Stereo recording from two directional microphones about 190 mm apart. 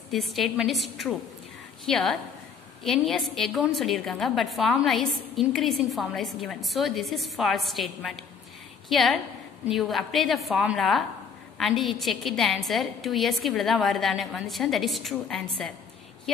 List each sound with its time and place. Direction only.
0.1 s a woman's voice: centre (ahead or behind)